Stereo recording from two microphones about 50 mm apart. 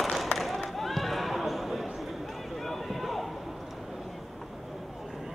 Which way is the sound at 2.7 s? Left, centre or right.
Centre.